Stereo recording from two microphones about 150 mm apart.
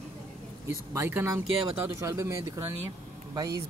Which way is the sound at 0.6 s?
15° right (ahead or behind).